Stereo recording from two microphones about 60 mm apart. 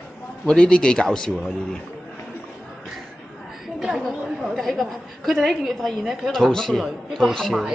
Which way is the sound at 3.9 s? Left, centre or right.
Centre.